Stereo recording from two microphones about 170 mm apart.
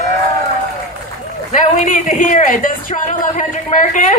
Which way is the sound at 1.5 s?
45° left (ahead or behind).